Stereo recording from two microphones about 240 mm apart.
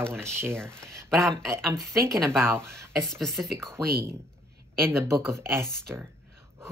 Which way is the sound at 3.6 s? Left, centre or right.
Centre.